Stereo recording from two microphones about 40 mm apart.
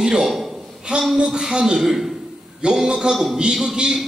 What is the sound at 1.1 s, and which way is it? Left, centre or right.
Speech, centre.